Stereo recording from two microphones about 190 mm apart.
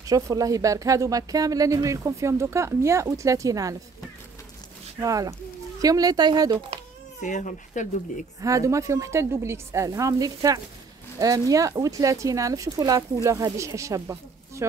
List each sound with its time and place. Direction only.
0.1 s speech: 20° right (ahead or behind)
5.0 s speech: 20° right (ahead or behind)
7.2 s speech: 40° left (ahead or behind)
8.4 s speech: 15° right (ahead or behind)